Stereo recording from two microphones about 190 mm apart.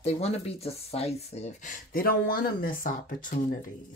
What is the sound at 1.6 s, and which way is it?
Speech, 45° left (ahead or behind).